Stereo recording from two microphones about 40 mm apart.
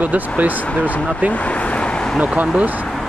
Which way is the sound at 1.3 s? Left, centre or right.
Left.